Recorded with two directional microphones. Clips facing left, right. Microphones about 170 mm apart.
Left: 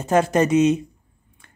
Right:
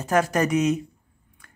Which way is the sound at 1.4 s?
25° left (ahead or behind).